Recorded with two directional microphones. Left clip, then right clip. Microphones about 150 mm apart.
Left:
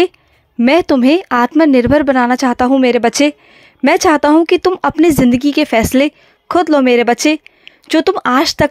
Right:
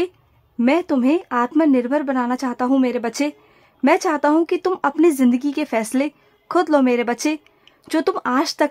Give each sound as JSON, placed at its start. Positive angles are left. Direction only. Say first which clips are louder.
{"t": 0.7, "sound": "a woman's voice", "louder": "left 8 dB", "side_deg": 35}